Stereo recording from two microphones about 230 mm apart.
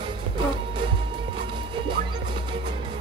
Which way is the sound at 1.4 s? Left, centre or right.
Right.